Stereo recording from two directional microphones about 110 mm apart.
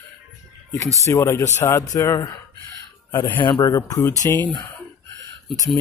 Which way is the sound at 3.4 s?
40° left (ahead or behind).